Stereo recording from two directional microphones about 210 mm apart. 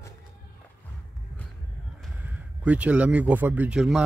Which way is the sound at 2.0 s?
5° right (ahead or behind).